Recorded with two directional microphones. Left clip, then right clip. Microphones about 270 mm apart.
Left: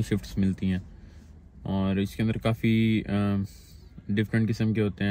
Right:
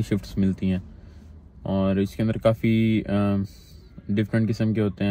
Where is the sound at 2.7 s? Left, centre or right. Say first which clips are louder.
Right 3 dB; right.